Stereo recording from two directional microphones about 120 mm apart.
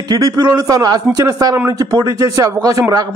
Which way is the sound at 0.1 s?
30° right (ahead or behind).